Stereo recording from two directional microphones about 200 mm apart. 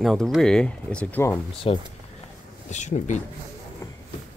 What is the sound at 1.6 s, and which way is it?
Speech, 30° left (ahead or behind).